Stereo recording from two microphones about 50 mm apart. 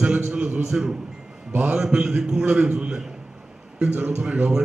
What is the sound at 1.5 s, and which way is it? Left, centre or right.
Speech, right.